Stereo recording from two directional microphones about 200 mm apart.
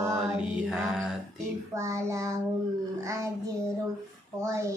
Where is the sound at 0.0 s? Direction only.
10° right (ahead or behind).